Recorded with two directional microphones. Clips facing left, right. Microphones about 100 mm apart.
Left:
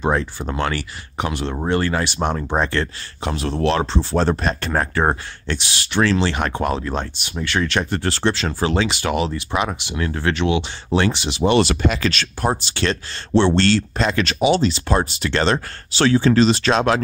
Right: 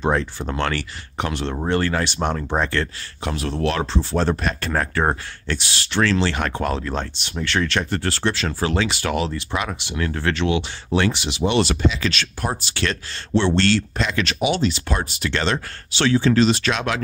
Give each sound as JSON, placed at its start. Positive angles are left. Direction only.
{"t": 0.0, "sound": "speech", "side_deg": 10}
{"t": 11.6, "sound": "speech", "side_deg": 60}